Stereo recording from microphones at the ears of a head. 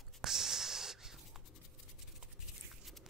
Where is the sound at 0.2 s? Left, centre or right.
Right.